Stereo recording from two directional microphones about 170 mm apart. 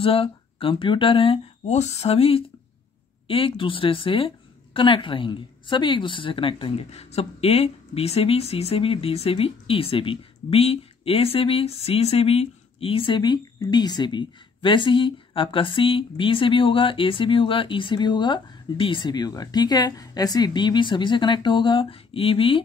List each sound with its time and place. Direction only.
0.0 s a woman's voice: 35° left (ahead or behind)